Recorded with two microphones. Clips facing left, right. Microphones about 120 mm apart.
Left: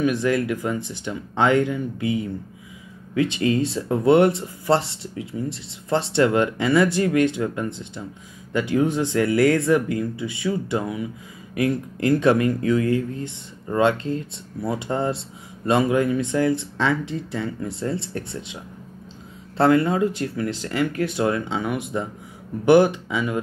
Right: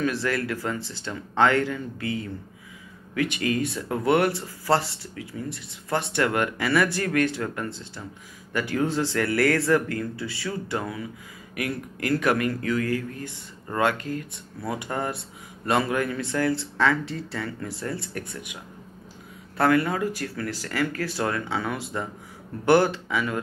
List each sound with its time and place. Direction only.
0.0 s speech: 20° left (ahead or behind)